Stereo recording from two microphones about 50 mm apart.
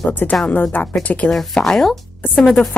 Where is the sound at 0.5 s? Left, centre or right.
Left.